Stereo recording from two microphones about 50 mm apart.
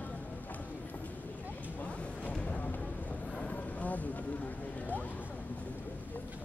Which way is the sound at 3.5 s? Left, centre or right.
Left.